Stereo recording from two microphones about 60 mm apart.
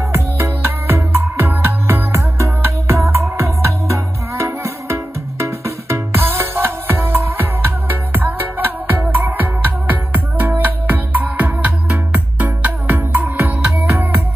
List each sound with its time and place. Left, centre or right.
0.1 s music: right